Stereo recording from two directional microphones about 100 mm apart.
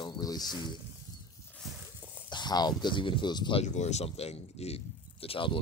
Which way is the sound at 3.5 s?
90° left.